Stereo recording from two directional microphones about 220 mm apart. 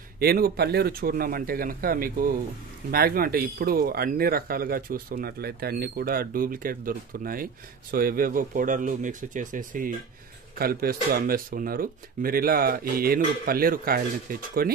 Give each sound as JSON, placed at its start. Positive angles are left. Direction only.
{"t": 0.2, "sound": "speech", "side_deg": -45}